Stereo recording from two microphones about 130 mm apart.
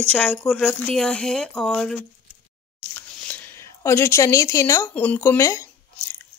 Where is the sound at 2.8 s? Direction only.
10° left (ahead or behind).